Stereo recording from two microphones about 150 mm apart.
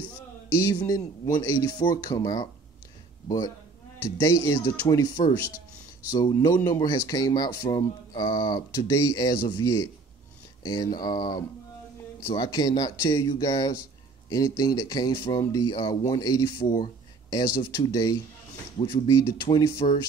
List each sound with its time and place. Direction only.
0.7 s speech: 25° left (ahead or behind)
19.8 s speech: 45° left (ahead or behind)